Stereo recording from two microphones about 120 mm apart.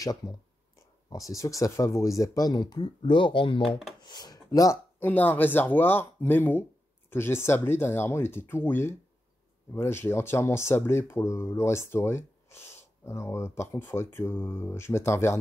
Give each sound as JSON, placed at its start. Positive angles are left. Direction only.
{"t": 0.0, "sound": "speech", "side_deg": 30}
{"t": 5.0, "sound": "speech", "side_deg": 15}